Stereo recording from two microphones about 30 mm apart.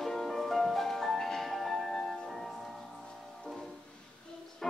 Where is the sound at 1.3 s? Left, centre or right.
Centre.